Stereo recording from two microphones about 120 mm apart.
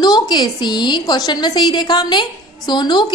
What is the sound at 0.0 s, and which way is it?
A woman's voice, 35° left (ahead or behind).